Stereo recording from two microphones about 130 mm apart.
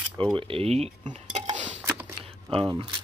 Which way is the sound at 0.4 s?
45° right (ahead or behind).